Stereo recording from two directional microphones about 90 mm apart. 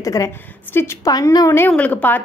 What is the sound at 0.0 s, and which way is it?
Speech, 40° left (ahead or behind).